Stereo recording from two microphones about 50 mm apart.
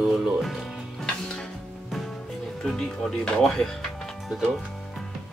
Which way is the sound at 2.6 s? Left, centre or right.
Centre.